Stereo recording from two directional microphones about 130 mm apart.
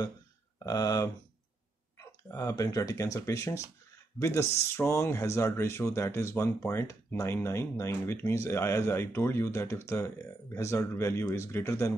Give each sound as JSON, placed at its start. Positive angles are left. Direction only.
{"t": 0.7, "sound": "speech", "side_deg": 30}